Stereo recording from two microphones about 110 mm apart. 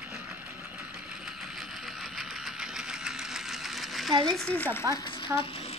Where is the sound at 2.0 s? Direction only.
Centre (ahead or behind).